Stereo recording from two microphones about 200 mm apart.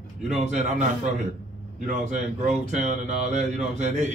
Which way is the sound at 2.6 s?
35° right (ahead or behind).